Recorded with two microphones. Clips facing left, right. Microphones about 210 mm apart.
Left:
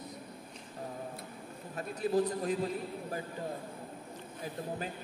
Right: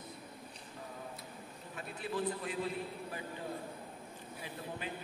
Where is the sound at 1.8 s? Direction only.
40° left (ahead or behind).